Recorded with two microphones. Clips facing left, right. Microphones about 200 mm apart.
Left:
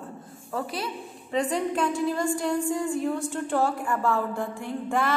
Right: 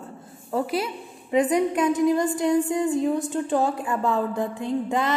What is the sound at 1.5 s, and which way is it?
A woman's voice, 20° right (ahead or behind).